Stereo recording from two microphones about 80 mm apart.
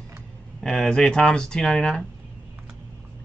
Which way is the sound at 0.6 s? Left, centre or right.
Centre.